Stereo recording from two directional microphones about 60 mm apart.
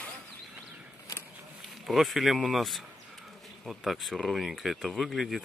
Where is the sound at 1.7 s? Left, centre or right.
Centre.